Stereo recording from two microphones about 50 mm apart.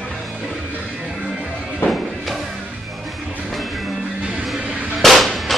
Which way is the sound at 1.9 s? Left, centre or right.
Centre.